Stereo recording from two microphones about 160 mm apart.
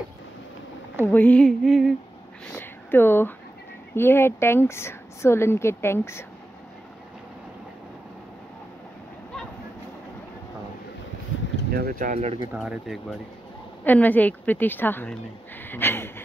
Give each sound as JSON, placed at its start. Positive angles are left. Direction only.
{"t": 1.0, "sound": "female singing", "side_deg": 10}
{"t": 2.5, "sound": "a woman's voice", "side_deg": 15}
{"t": 11.7, "sound": "speech", "side_deg": -65}
{"t": 12.5, "sound": "female singing", "side_deg": 0}
{"t": 13.8, "sound": "a woman's voice", "side_deg": 10}